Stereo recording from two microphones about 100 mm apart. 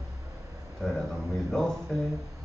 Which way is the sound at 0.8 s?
5° left (ahead or behind).